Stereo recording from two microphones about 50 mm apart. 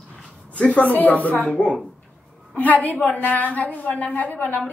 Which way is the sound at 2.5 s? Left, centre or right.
Left.